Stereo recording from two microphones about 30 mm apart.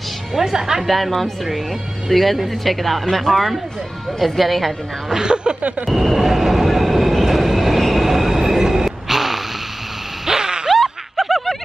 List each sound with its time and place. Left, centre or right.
0.4 s a woman's voice: centre
0.8 s speech: centre
5.1 s speech: right
5.9 s speech: centre
6.1 s train: centre
10.2 s a sound: centre
10.7 s a sound: centre